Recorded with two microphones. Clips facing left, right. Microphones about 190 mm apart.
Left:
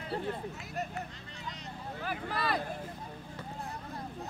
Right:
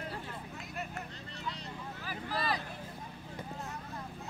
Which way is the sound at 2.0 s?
55° left (ahead or behind).